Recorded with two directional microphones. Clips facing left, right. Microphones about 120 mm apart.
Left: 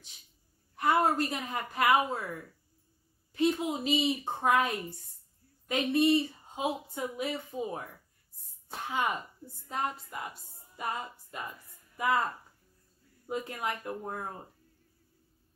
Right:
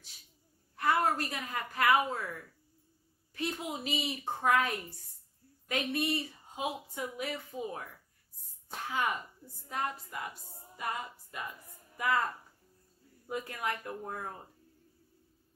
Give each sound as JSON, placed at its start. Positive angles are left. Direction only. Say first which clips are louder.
{"t": 0.7, "sound": "a woman's voice", "louder": "left 3 dB", "side_deg": 20}
{"t": 8.8, "sound": "a woman's voice", "louder": "left 2 dB", "side_deg": 20}
{"t": 12.0, "sound": "a woman's voice", "louder": "left 2 dB", "side_deg": 20}
{"t": 13.3, "sound": "a woman's voice", "louder": "left 2 dB", "side_deg": 25}